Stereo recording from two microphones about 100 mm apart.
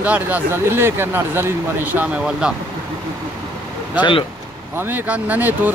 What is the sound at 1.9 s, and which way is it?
Speech, 10° right (ahead or behind).